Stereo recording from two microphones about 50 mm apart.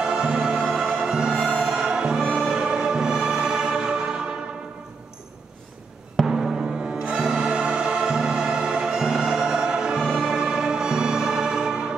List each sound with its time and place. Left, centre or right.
0.0 s music: centre
6.2 s music: centre